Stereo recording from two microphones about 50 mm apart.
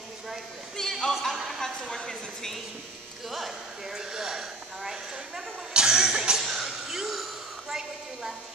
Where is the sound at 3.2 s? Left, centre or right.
Centre.